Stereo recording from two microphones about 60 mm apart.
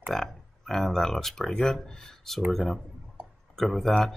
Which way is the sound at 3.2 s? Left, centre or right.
Right.